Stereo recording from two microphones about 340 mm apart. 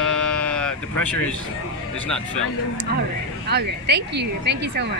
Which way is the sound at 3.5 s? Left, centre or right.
Right.